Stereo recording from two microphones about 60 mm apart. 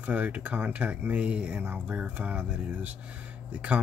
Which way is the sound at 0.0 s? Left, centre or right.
Right.